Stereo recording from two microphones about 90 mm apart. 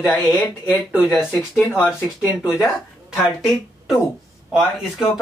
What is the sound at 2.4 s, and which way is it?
Speech, 30° left (ahead or behind).